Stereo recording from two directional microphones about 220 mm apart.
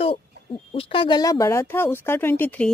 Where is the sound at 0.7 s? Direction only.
20° left (ahead or behind).